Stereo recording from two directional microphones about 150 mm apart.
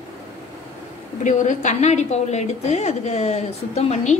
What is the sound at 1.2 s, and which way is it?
A woman's voice, 55° left (ahead or behind).